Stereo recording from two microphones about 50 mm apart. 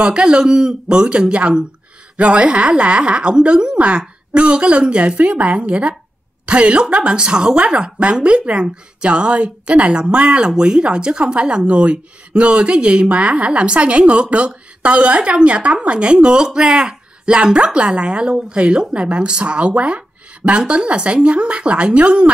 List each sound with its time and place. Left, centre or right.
0.0 s a woman's voice: centre